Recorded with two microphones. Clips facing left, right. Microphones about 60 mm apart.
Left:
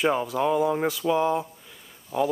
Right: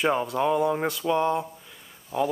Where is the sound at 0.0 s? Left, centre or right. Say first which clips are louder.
Even; centre.